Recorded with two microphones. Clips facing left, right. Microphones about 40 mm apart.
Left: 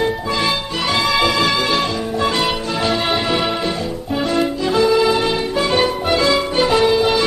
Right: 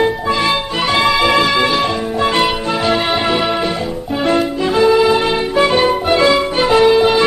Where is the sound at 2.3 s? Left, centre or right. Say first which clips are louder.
Right 4 dB; right.